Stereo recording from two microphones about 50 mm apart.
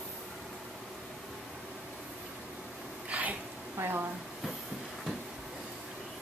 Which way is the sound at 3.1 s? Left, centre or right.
Right.